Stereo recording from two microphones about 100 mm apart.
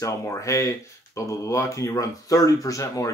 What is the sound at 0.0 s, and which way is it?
Speech, 30° left (ahead or behind).